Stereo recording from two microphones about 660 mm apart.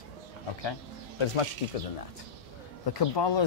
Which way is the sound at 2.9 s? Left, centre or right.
Left.